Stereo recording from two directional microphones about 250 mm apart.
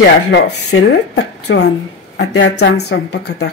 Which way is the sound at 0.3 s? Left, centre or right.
Left.